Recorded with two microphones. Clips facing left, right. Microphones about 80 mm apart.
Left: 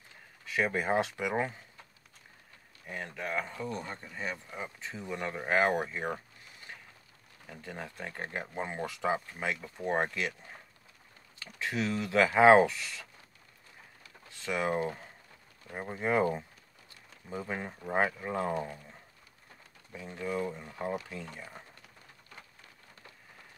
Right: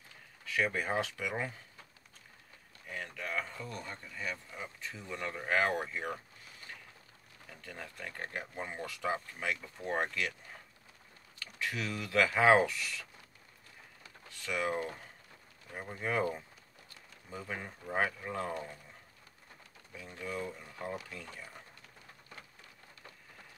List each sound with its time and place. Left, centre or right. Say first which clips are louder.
0.5 s speech: left 3 dB; left
2.9 s speech: left 3 dB; left
7.6 s speech: left 4 dB; left
11.3 s speech: left 4 dB; left
14.3 s speech: left 3 dB; left
19.9 s speech: left 5 dB; left